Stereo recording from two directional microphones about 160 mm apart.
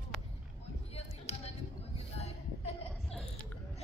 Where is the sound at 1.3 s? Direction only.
40° left (ahead or behind).